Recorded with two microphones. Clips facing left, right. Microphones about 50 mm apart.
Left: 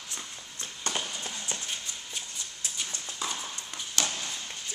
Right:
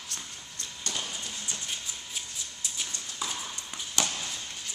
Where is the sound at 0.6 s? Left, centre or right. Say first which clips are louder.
Left 3 dB; left.